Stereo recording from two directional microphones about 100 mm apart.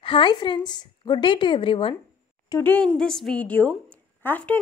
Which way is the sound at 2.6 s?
15° left (ahead or behind).